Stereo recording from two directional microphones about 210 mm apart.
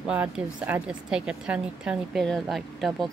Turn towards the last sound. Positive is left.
turn(degrees=0)  # may be behind; listen again after turning